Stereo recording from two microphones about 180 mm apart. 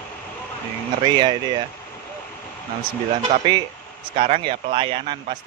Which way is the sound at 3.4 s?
25° right (ahead or behind).